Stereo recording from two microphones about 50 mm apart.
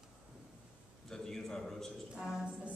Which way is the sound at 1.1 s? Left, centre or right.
Centre.